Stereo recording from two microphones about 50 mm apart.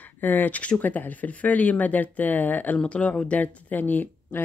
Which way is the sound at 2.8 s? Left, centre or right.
Left.